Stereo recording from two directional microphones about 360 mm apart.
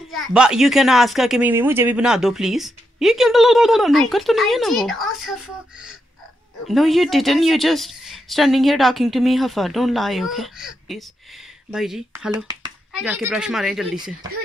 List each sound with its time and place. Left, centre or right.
0.1 s speech: centre